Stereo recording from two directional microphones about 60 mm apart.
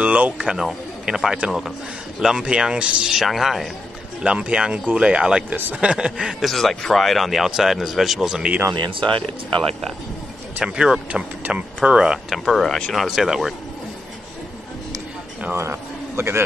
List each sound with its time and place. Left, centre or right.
0.0 s speech: right; by 3.6 s centre
4.2 s speech: centre
5.5 s a man's voice: right
5.9 s speech: centre
6.4 s speech: centre
10.6 s speech: centre
12.4 s speech: centre
15.5 s a man's voice: right